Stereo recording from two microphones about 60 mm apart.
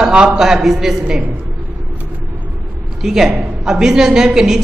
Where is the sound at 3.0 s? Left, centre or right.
Centre.